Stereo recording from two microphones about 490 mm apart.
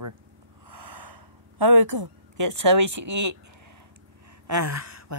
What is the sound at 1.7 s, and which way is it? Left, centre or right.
Speech, right.